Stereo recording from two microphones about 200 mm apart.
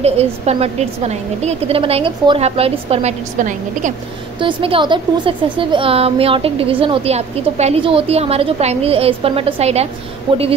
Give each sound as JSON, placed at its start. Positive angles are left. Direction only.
{"t": 0.0, "sound": "a woman's voice", "side_deg": -30}
{"t": 4.4, "sound": "a woman's voice", "side_deg": -25}